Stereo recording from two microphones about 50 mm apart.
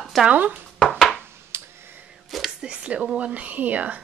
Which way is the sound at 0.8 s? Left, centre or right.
Centre.